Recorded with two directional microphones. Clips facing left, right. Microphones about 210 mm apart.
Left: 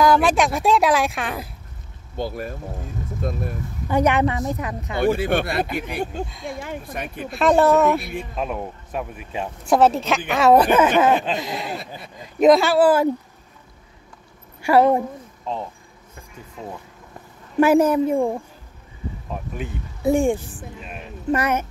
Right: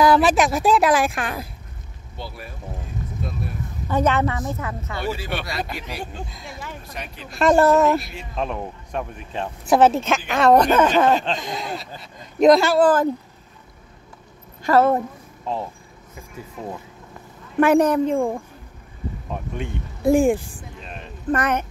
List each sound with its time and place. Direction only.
0.0 s speech: 5° right (ahead or behind)
2.1 s speech: 45° left (ahead or behind)
3.9 s a woman's voice: 15° left (ahead or behind)
5.0 s speech: 55° left (ahead or behind)
7.2 s speech: centre (ahead or behind)
9.7 s speech: 5° right (ahead or behind)
14.6 s a woman's voice: 15° left (ahead or behind)
17.6 s a woman's voice: 5° left (ahead or behind)
19.5 s speech: 5° left (ahead or behind)